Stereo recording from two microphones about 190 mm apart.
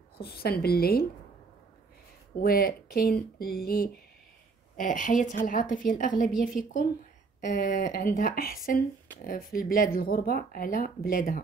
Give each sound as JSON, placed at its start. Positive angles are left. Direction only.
{"t": 0.2, "sound": "speech", "side_deg": 55}
{"t": 2.3, "sound": "speech", "side_deg": 50}